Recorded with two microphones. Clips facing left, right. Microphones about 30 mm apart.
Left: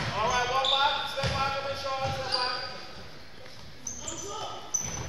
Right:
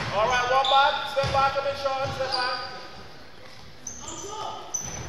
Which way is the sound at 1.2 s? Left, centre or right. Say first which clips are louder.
Right 6 dB; right.